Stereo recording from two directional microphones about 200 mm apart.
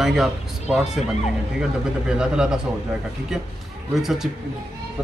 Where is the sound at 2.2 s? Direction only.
5° right (ahead or behind).